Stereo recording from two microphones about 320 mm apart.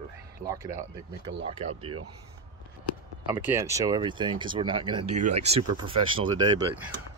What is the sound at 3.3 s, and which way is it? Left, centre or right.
Speech, centre.